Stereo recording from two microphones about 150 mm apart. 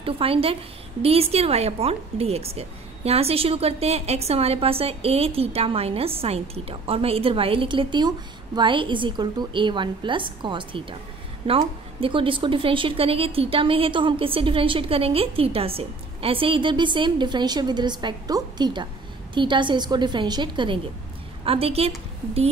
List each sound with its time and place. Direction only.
0.0 s a woman's voice: 40° right (ahead or behind)